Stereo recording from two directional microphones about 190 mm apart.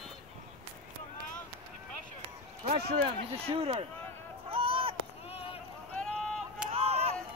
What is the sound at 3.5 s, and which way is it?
Speech, 30° right (ahead or behind).